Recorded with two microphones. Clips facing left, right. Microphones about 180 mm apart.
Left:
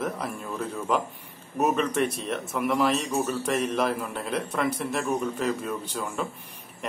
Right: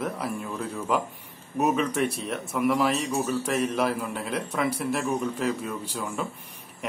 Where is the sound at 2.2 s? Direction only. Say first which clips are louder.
Right 2 dB; 5° right (ahead or behind).